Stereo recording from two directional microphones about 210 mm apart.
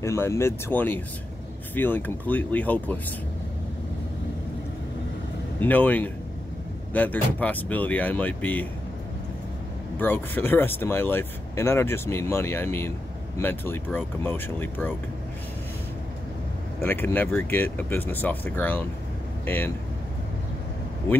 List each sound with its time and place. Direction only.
0.0 s speech: 15° left (ahead or behind)
5.6 s speech: 10° left (ahead or behind)
9.9 s speech: 10° left (ahead or behind)
16.8 s speech: 10° left (ahead or behind)